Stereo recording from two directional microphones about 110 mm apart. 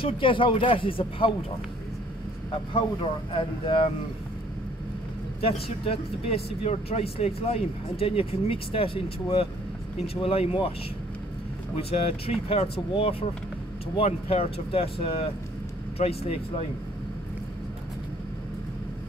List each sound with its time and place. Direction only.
0.0 s speech: 50° left (ahead or behind)
2.7 s speech: 55° left (ahead or behind)
5.4 s speech: 60° left (ahead or behind)
11.7 s speech: 65° left (ahead or behind)